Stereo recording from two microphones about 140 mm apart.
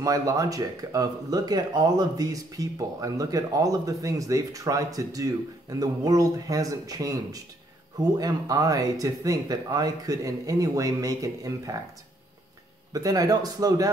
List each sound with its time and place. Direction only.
0.0 s speech: 25° right (ahead or behind)
12.9 s speech: 25° right (ahead or behind)